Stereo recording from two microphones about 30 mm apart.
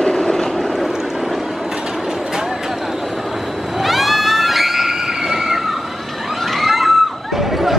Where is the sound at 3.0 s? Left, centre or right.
Centre.